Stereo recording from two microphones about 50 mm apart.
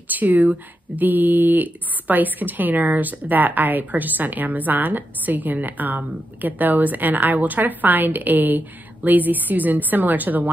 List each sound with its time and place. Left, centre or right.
0.1 s speech: right